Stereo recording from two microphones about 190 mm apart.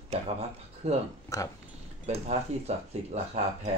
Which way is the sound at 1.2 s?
15° left (ahead or behind).